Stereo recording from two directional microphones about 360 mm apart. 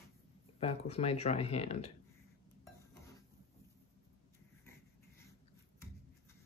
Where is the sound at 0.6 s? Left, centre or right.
Centre.